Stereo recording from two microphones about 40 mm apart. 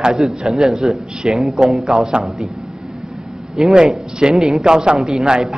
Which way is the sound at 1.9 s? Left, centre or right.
Centre.